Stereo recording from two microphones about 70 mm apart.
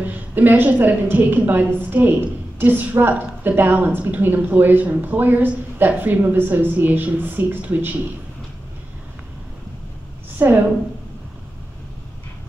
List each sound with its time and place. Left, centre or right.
0.0 s a woman's voice: right
10.3 s a woman's voice: right